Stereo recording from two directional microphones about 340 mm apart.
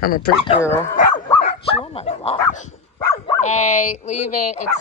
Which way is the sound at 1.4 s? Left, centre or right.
Centre.